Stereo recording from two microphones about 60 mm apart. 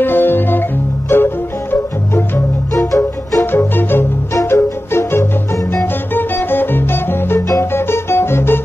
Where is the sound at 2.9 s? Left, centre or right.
Left.